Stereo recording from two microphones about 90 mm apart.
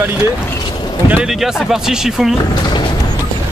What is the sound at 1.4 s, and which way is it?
Speech, 5° right (ahead or behind).